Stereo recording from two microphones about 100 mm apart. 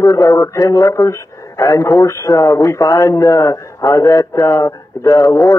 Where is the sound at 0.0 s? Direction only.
30° left (ahead or behind).